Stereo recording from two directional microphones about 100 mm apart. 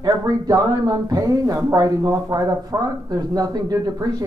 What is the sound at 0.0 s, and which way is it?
Speech, 35° right (ahead or behind).